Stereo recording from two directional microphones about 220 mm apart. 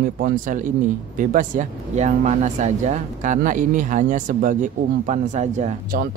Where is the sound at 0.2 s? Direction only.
35° right (ahead or behind).